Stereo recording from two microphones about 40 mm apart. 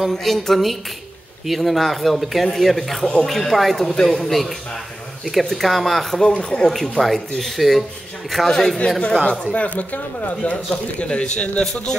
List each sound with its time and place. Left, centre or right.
0.1 s speech: centre
6.3 s speech: left
6.7 s speech: centre
8.5 s a man's voice: centre
11.6 s a man's voice: centre